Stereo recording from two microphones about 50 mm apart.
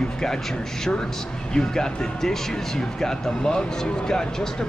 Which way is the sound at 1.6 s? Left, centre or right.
Centre.